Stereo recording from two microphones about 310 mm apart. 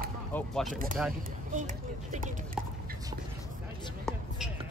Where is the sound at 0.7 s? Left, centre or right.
Right.